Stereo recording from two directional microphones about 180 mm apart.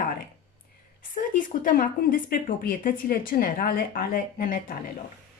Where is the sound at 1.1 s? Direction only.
50° left (ahead or behind).